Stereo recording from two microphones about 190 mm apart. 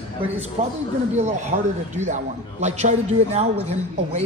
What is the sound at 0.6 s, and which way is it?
A man's voice, 35° right (ahead or behind).